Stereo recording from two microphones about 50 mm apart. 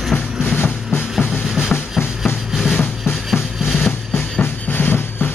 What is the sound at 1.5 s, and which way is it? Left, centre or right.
Drum, centre.